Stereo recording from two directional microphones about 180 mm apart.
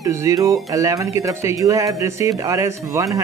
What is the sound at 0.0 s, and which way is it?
Speech, 15° right (ahead or behind).